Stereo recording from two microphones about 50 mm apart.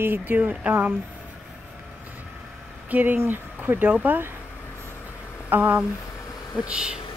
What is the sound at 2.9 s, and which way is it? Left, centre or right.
Speech, right.